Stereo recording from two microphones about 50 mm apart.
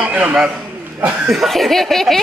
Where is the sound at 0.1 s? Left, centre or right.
Right.